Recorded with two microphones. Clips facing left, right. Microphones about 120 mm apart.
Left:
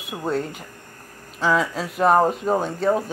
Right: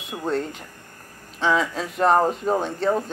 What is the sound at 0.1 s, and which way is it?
Speech, 5° left (ahead or behind).